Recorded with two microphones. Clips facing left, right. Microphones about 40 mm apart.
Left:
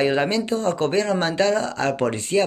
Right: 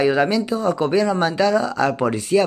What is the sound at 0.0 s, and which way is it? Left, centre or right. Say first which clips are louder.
Speech: right 3 dB; left.